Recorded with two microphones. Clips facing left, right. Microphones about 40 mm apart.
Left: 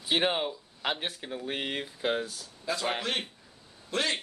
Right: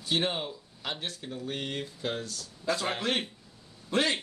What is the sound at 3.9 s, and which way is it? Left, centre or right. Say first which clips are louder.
Speech: right 3 dB; centre.